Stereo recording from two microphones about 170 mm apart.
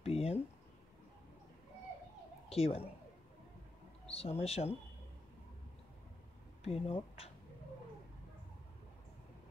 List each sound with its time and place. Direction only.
0.0 s a sound: 35° left (ahead or behind)
2.5 s speech: 35° left (ahead or behind)
4.1 s speech: 35° left (ahead or behind)
6.6 s speech: 35° left (ahead or behind)